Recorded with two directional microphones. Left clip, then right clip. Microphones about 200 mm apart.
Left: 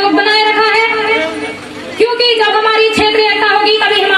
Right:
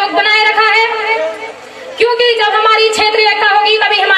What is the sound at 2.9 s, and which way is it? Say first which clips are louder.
Music: even; 45° right (ahead or behind).